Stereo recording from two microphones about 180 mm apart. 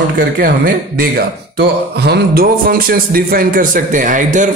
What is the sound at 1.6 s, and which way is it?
Speech, 65° right (ahead or behind).